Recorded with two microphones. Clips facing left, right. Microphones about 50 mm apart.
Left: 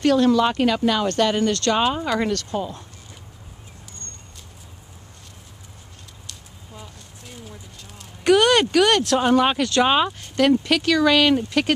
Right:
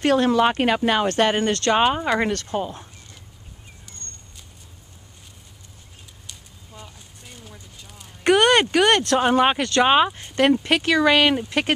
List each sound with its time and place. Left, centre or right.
0.0 s speech: right
1.6 s speech: centre
6.3 s a sound: centre
6.7 s a sound: centre
8.2 s speech: right
9.6 s speech: centre